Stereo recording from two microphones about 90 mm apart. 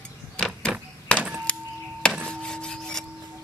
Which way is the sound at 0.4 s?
10° left (ahead or behind).